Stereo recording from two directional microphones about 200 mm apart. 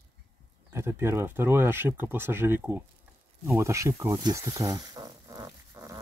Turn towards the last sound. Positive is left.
turn(degrees=-15)  # may be behind; listen again after turning